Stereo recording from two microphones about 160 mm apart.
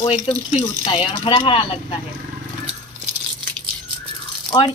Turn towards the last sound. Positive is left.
turn(degrees=30)  # may be behind; listen again after turning